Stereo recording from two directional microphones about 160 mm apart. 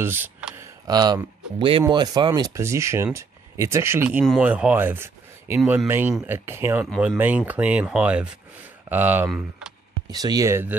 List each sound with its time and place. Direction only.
0.0 s a sound: 15° right (ahead or behind)
0.8 s speech: 25° right (ahead or behind)
10.0 s speech: 25° right (ahead or behind)